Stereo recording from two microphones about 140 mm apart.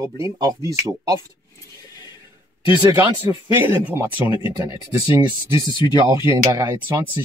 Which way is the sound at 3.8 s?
15° right (ahead or behind).